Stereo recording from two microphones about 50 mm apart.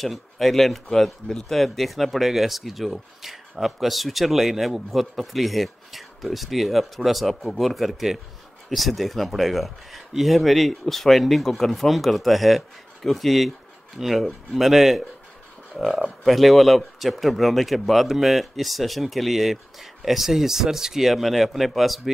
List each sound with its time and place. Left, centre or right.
0.0 s speech: centre